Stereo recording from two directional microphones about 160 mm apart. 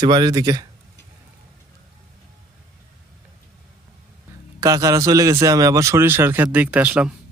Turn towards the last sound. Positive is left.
turn(degrees=-10)  # may be behind; listen again after turning